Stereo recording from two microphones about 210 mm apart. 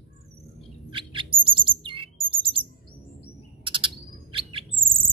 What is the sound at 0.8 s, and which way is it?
Bird, 25° right (ahead or behind).